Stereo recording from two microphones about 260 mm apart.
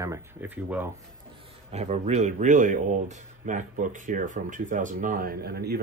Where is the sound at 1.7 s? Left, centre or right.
Right.